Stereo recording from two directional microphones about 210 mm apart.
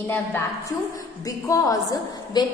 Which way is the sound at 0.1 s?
10° left (ahead or behind).